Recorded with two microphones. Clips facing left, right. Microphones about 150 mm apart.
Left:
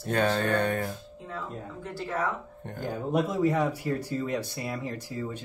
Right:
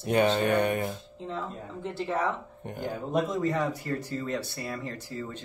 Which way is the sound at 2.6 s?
15° right (ahead or behind).